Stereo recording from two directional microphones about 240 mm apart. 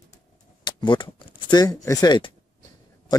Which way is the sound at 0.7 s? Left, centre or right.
Centre.